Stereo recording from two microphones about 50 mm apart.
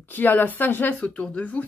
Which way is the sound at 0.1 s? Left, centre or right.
Left.